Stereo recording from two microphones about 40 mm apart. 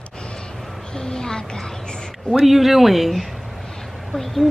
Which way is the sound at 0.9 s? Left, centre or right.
Centre.